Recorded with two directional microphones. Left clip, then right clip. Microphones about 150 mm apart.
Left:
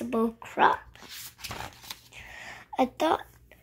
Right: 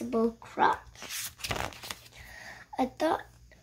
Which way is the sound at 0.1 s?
25° left (ahead or behind).